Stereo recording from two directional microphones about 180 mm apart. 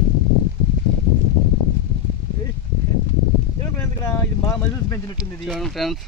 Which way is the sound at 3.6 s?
15° left (ahead or behind).